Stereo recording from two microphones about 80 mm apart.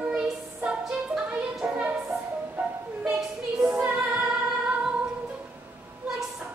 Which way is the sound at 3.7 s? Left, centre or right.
Centre.